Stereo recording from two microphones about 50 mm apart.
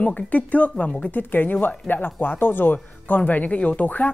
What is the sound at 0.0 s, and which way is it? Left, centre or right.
A woman's voice, left.